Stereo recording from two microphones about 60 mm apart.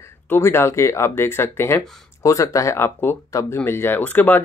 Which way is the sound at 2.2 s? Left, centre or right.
Left.